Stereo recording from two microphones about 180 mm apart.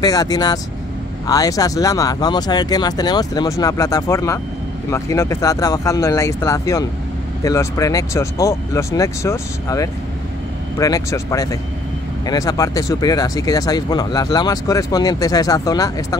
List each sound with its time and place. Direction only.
0.0 s speech: 20° left (ahead or behind)